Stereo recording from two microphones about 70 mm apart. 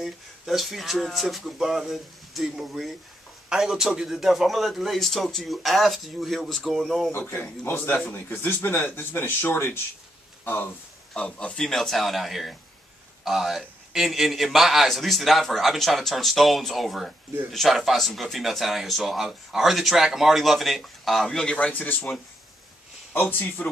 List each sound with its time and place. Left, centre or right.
0.0 s speech: centre
7.1 s speech: left
11.1 s a man's voice: centre
23.1 s speech: left